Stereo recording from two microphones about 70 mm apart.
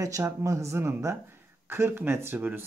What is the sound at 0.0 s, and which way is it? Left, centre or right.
Speech, right.